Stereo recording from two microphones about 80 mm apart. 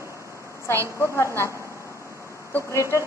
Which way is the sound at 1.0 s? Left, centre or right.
Left.